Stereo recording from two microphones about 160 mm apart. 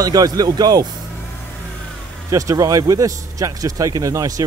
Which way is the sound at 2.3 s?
20° right (ahead or behind).